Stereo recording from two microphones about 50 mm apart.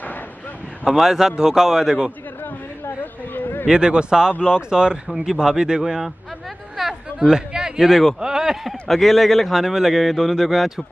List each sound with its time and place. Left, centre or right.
0.8 s speech: centre
3.3 s a sound: left
3.6 s speech: centre
6.8 s a sound: centre
8.2 s speech: centre
8.8 s a man's voice: centre